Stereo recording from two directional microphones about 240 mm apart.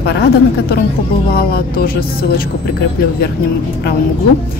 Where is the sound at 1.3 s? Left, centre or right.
Left.